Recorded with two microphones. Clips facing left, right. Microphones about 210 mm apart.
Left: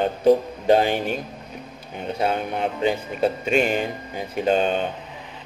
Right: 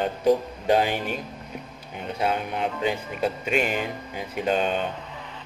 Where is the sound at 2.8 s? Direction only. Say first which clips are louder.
Left 6 dB; 30° left (ahead or behind).